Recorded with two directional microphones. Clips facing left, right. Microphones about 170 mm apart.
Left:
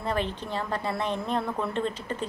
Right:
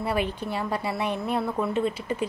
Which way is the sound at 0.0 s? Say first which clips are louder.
Right 2 dB; 10° right (ahead or behind).